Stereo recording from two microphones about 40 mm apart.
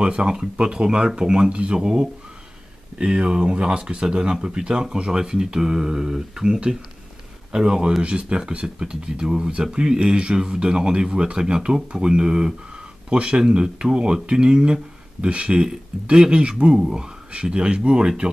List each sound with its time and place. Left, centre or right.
0.0 s speech: right
1.8 s speech: centre
8.0 s speech: right